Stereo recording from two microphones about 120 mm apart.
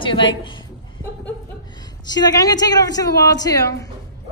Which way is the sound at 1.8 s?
35° left (ahead or behind).